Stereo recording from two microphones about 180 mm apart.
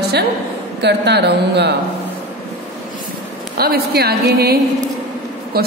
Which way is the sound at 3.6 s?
60° right (ahead or behind).